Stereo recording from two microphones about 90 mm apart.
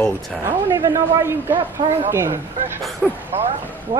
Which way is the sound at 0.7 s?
35° right (ahead or behind).